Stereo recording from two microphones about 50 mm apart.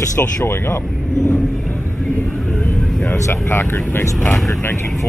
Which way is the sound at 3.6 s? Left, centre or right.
Left.